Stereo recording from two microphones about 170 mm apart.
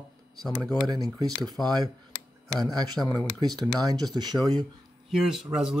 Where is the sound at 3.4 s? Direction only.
20° right (ahead or behind).